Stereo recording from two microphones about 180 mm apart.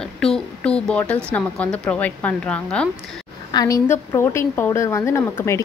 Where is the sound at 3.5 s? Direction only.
20° left (ahead or behind).